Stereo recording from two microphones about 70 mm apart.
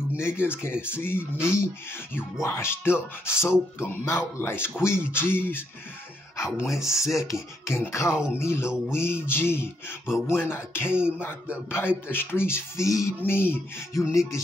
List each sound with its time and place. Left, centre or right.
0.2 s speech: left
6.5 s speech: left
13.2 s speech: left